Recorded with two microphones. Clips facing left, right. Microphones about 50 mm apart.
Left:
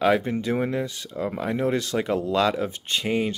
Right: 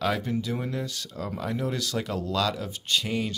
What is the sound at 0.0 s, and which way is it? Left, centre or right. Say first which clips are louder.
Speech: left 6 dB; left.